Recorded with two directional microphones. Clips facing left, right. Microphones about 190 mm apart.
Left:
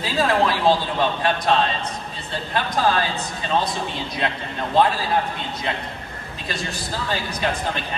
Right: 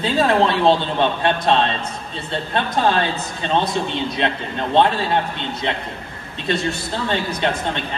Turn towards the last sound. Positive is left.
turn(degrees=-25)  # may be behind; listen again after turning